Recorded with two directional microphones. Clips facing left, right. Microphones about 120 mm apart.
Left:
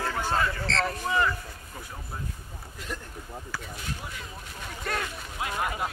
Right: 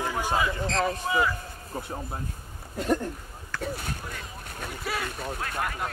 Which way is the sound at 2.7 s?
50° right (ahead or behind).